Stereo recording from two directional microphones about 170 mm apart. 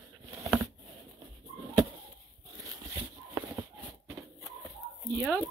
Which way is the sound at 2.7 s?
20° right (ahead or behind).